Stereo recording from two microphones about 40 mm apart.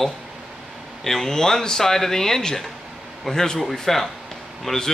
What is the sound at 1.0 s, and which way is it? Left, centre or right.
Speech, centre.